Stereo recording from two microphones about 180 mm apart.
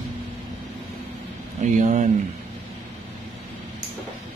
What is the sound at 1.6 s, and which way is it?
Speech, 40° right (ahead or behind).